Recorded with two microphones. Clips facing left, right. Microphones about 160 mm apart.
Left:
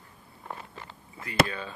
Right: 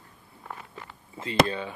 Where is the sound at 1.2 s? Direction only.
25° right (ahead or behind).